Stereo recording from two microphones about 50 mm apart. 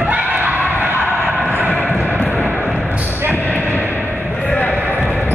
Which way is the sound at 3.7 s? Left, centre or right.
Right.